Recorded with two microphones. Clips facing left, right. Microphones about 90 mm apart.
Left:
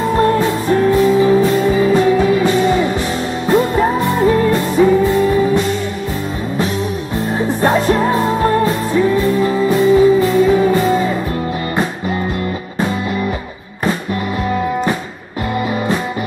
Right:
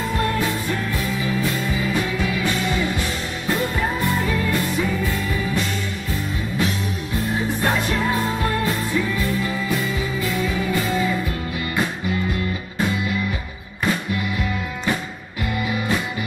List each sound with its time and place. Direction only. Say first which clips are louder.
0.1 s music: left 10 dB; 35° left (ahead or behind)
7.3 s music: left 9 dB; 35° left (ahead or behind)